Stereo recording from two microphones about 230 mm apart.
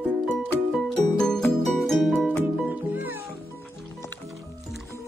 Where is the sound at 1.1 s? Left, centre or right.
Centre.